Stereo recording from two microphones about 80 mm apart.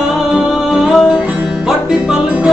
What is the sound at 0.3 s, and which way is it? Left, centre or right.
Music, centre.